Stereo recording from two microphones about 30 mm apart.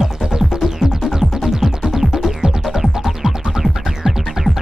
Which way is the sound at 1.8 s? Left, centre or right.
Right.